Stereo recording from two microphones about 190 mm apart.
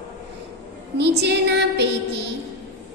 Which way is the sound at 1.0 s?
60° right (ahead or behind).